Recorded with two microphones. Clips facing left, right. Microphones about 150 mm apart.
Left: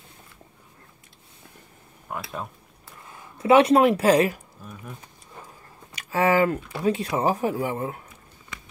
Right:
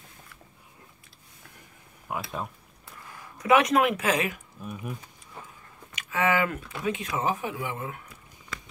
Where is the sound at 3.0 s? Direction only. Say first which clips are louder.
Left 6 dB; 25° left (ahead or behind).